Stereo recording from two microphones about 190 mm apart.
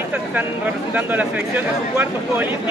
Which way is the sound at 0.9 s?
5° right (ahead or behind).